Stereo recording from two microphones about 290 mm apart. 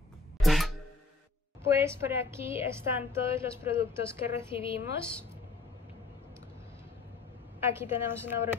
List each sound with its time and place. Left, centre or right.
0.4 s music: centre
1.6 s a woman's voice: centre
4.6 s a woman's voice: centre
7.6 s a woman's voice: centre